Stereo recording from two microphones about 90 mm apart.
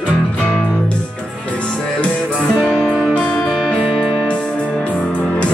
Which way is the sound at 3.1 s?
15° left (ahead or behind).